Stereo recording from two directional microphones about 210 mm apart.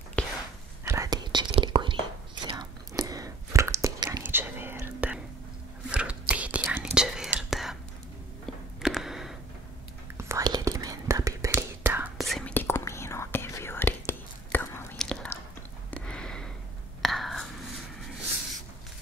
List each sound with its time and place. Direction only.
0.2 s whispering: 5° left (ahead or behind)
0.8 s whispering: 15° right (ahead or behind)
8.8 s a sound: centre (ahead or behind)
10.1 s whispering: 15° right (ahead or behind)
12.2 s whispering: centre (ahead or behind)
15.9 s a sound: 5° left (ahead or behind)
17.0 s whispering: centre (ahead or behind)